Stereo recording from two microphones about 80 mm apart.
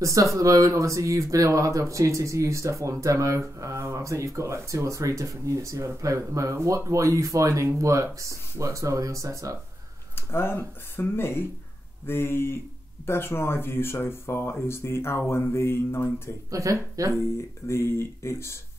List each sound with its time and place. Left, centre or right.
0.0 s speech: right
10.1 s speech: left
16.4 s speech: right
17.2 s speech: left